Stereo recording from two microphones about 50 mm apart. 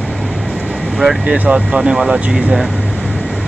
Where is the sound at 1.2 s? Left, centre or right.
Right.